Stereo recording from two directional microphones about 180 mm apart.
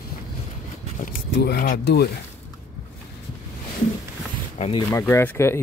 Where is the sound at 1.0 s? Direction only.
50° left (ahead or behind).